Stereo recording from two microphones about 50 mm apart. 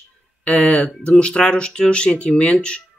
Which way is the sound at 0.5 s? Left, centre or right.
Left.